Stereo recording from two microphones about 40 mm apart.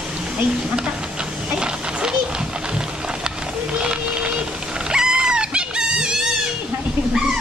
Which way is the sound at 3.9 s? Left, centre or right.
Right.